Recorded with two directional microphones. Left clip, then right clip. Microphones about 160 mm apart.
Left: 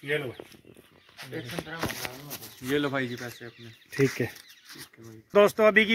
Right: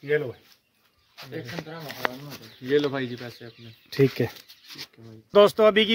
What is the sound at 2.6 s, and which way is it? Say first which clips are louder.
Speech: right 5 dB; 20° left (ahead or behind).